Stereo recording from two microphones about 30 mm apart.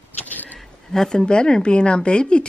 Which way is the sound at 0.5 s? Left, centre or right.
Left.